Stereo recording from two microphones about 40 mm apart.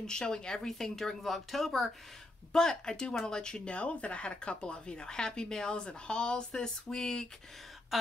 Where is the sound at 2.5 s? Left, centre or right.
Centre.